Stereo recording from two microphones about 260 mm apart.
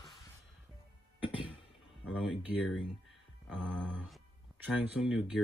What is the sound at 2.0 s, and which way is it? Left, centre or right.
Speech, centre.